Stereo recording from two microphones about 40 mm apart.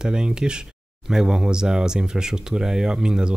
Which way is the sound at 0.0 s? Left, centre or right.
Right.